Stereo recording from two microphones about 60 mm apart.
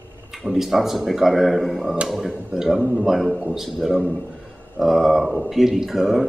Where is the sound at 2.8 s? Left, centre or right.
Centre.